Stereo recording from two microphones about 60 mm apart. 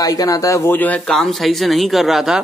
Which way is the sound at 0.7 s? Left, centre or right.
Left.